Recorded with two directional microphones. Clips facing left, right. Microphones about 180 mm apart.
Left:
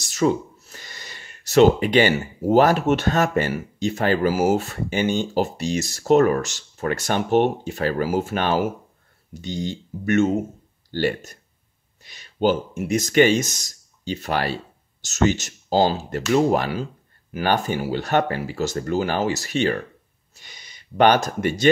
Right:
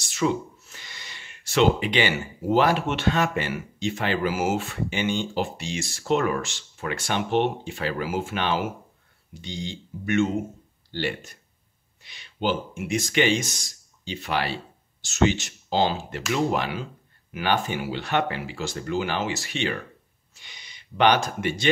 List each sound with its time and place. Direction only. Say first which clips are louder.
0.0 s speech: left 4 dB; 40° left (ahead or behind)